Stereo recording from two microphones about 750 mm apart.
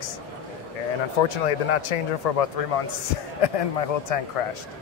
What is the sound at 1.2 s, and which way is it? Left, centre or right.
Speech, left.